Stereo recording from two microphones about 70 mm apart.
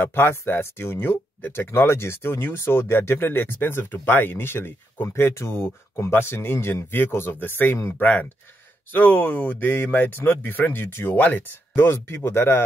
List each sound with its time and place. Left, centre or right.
0.0 s speech: left